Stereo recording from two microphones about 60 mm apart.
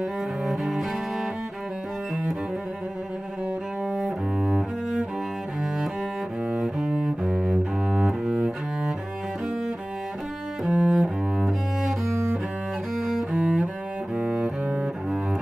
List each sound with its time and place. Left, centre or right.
0.5 s cello: centre
3.9 s cello: centre
6.5 s cello: centre
10.6 s cello: centre